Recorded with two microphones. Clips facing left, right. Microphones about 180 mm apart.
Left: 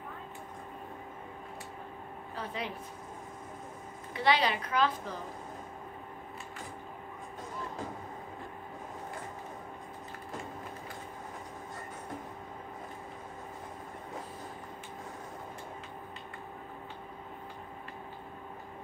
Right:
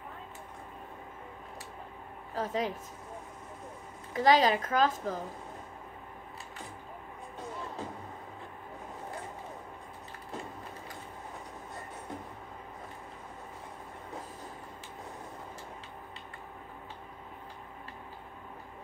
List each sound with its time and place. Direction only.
2.3 s a woman's voice: 40° right (ahead or behind)
4.1 s a woman's voice: 40° right (ahead or behind)